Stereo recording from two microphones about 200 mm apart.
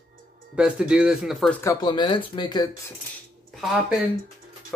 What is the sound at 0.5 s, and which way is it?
Speech, 5° right (ahead or behind).